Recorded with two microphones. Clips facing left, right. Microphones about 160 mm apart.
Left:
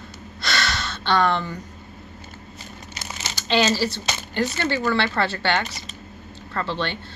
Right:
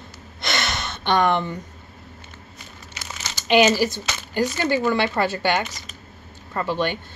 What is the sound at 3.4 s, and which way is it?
A woman's voice, 15° right (ahead or behind).